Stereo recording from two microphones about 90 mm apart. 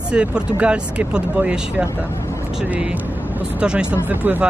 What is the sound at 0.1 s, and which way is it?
Speech, 10° right (ahead or behind).